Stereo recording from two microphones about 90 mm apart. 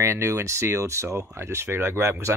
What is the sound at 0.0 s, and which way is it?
Speech, 35° right (ahead or behind).